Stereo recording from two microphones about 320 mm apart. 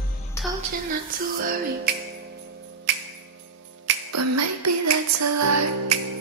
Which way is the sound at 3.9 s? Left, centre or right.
Right.